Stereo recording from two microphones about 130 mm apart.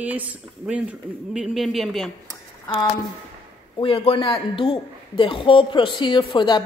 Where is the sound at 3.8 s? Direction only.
45° left (ahead or behind).